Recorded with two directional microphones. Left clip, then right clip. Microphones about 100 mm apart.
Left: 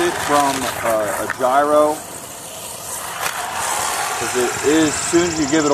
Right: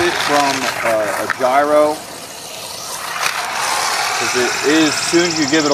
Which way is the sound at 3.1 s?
5° right (ahead or behind).